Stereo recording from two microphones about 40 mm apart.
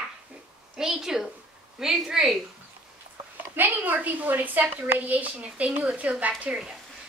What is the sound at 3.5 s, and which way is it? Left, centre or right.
A woman's voice, right.